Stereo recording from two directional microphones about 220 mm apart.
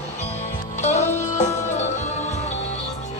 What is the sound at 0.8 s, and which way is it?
Music, 30° left (ahead or behind).